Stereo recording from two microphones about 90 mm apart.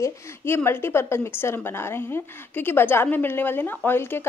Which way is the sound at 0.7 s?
25° left (ahead or behind).